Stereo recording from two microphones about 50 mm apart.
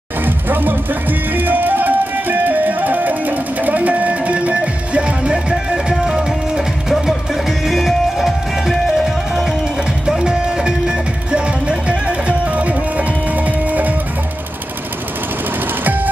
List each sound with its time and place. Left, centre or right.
0.2 s music: right; by 9.6 s centre
10.0 s music: centre; by 13.9 s right